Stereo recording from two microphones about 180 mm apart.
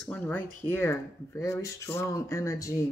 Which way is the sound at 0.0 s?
10° left (ahead or behind).